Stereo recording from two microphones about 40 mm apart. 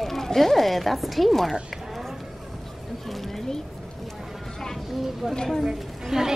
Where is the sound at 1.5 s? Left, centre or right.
Centre.